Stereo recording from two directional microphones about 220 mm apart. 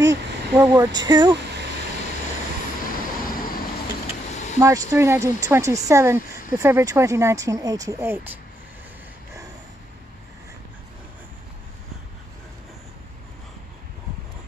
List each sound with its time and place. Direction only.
0.0 s speech: 15° right (ahead or behind)
3.3 s vehicle: 40° left (ahead or behind)
4.3 s a sound: 30° left (ahead or behind)
4.6 s speech: 15° right (ahead or behind)